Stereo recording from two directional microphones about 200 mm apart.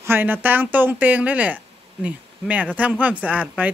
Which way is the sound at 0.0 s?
10° right (ahead or behind).